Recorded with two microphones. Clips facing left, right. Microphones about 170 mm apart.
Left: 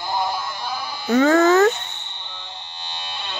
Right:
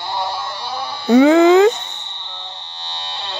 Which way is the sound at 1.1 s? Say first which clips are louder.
Right 5 dB; 15° right (ahead or behind).